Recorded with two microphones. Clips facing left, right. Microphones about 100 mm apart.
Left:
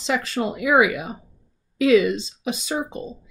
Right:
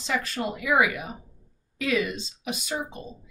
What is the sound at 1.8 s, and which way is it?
Speech, 90° left.